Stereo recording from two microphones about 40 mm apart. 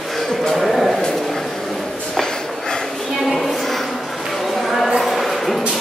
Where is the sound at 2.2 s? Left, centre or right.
Centre.